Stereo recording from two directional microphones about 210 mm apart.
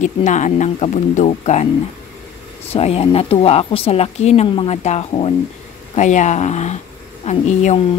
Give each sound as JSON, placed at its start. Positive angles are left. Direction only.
{"t": 0.0, "sound": "speech", "side_deg": 35}
{"t": 2.7, "sound": "speech", "side_deg": 30}